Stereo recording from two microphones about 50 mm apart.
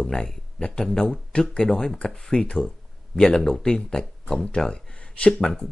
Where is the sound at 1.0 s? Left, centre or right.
Left.